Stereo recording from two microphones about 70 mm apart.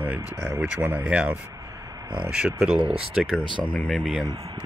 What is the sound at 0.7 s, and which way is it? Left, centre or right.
Speech, right.